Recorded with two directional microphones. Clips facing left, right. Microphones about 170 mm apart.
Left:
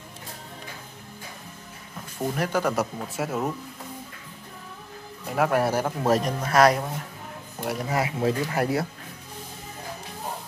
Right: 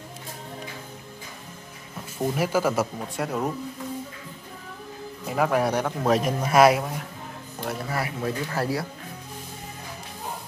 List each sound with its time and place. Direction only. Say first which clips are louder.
2.1 s speech: right 2 dB; 5° right (ahead or behind)
5.2 s speech: even; centre (ahead or behind)
6.4 s speech: right 3 dB; 10° right (ahead or behind)
7.6 s speech: left 3 dB; 15° left (ahead or behind)